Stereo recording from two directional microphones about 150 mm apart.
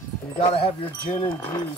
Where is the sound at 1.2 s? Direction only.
25° left (ahead or behind).